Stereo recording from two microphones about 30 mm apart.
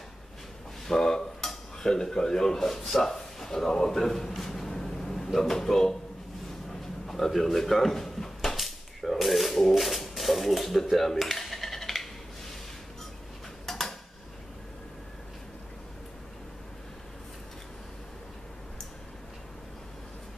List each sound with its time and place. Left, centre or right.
0.8 s dishes: centre
1.8 s speech: centre
6.7 s drawer open or close: centre
9.2 s speech: centre
11.2 s a sound: centre
13.7 s dishes: centre